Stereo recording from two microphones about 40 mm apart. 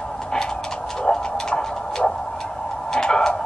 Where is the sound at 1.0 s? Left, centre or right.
Left.